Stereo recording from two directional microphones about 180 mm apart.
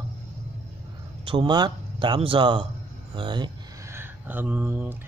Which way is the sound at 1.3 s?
25° right (ahead or behind).